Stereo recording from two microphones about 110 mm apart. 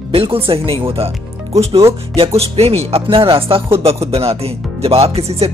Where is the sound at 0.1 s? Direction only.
60° right (ahead or behind).